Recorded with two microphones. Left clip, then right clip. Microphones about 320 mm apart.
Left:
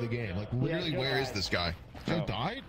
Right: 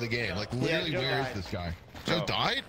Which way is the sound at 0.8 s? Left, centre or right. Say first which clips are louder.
Right 2 dB; centre.